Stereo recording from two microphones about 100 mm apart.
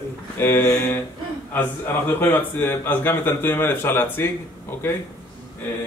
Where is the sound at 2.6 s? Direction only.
20° left (ahead or behind).